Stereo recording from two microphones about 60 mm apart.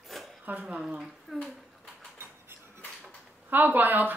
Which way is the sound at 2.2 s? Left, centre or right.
Right.